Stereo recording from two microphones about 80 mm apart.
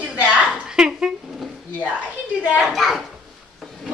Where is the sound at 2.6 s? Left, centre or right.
Centre.